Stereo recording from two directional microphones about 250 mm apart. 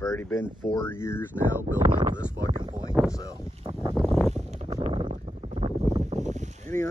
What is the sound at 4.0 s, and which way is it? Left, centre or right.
Boat, centre.